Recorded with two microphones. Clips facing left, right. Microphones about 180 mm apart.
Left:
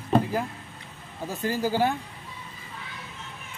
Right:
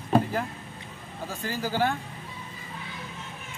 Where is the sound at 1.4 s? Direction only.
15° left (ahead or behind).